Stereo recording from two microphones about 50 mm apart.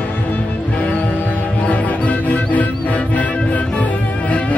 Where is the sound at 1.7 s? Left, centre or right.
Left.